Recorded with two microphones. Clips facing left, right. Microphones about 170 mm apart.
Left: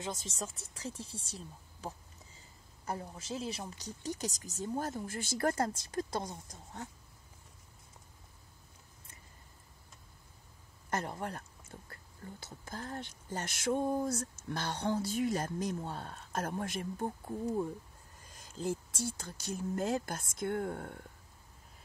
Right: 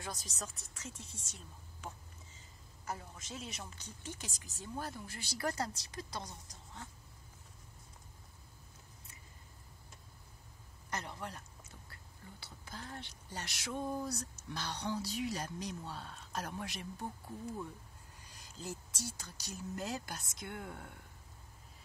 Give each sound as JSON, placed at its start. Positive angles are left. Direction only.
{"t": 0.0, "sound": "speech", "side_deg": 25}
{"t": 10.9, "sound": "speech", "side_deg": 50}